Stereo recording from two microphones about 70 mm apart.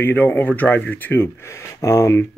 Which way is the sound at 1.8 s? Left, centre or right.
Left.